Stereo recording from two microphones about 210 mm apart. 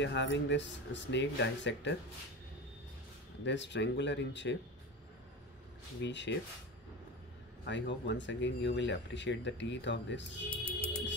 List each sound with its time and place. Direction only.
0.0 s speech: 60° left (ahead or behind)
3.4 s speech: 60° left (ahead or behind)
5.9 s speech: 55° left (ahead or behind)
7.6 s speech: 60° left (ahead or behind)
10.8 s music: 50° left (ahead or behind)